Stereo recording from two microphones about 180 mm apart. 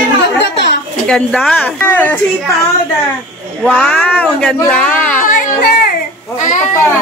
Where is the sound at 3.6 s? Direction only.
5° left (ahead or behind).